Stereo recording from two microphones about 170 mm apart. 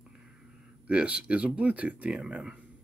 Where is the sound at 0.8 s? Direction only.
5° right (ahead or behind).